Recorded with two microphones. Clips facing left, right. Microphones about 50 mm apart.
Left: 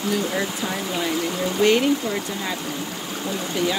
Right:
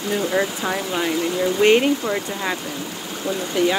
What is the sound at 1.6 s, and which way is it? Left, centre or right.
Speech, right.